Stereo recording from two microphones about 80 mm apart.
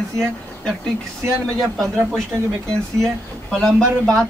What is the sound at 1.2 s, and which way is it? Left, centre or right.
Speech, right.